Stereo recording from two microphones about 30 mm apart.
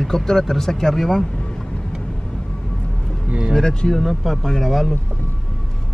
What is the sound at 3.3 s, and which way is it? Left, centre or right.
Music, right.